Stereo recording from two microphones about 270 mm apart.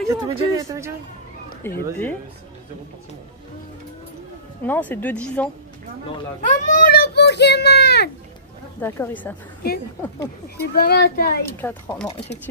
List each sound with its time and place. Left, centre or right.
0.1 s speech: centre
1.6 s speech: centre
4.6 s speech: centre
6.1 s a child's voice: left
8.8 s speech: centre
10.8 s a child's voice: left
11.4 s speech: centre